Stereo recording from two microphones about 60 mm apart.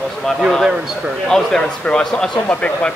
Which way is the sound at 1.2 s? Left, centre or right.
Centre.